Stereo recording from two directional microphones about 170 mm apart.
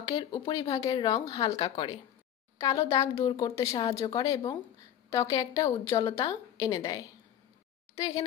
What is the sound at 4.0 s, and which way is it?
A woman's voice, 20° left (ahead or behind).